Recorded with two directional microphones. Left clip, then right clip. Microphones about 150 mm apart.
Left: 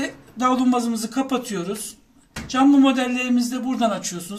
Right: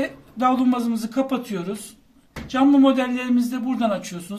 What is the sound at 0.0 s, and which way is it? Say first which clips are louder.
A man's voice: right 1 dB; 15° right (ahead or behind).